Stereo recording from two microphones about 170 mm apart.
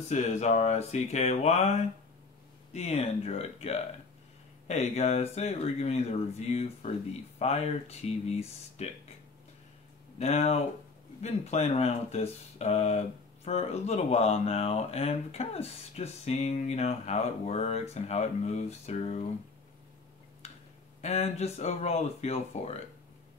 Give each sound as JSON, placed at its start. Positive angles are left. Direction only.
{"t": 0.1, "sound": "speech", "side_deg": 45}
{"t": 10.1, "sound": "speech", "side_deg": 40}
{"t": 21.0, "sound": "speech", "side_deg": 40}